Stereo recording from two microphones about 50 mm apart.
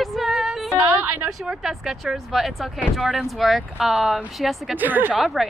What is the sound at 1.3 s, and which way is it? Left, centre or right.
Speech, centre.